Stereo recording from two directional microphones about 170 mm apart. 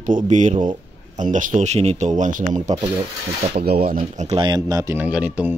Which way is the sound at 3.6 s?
65° right (ahead or behind).